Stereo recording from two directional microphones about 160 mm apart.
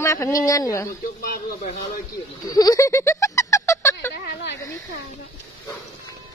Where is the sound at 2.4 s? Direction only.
20° left (ahead or behind).